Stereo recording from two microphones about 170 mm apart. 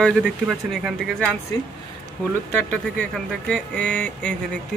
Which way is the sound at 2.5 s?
5° left (ahead or behind).